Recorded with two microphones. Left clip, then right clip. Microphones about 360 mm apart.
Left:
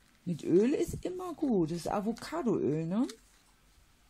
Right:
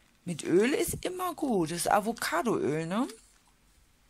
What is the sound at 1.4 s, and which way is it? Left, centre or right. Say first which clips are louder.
Speech: left 1 dB; right.